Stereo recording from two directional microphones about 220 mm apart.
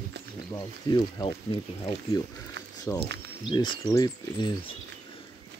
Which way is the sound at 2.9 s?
15° left (ahead or behind).